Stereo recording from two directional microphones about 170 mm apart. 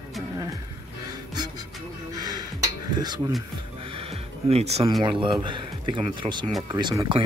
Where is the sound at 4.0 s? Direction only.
35° right (ahead or behind).